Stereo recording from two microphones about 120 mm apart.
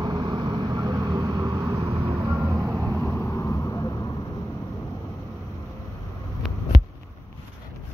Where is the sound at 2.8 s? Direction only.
15° left (ahead or behind).